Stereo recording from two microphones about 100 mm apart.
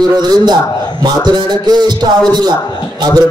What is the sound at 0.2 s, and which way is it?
A man's voice, 45° right (ahead or behind).